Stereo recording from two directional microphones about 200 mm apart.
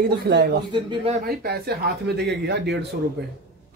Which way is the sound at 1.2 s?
50° right (ahead or behind).